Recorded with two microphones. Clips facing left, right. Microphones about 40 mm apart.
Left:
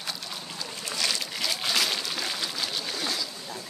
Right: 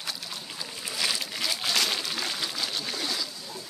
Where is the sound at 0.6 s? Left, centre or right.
Centre.